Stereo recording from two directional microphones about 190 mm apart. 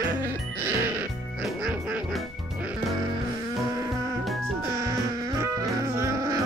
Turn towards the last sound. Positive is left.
turn(degrees=-15)  # may be behind; listen again after turning